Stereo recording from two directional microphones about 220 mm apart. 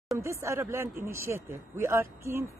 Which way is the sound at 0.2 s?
15° right (ahead or behind).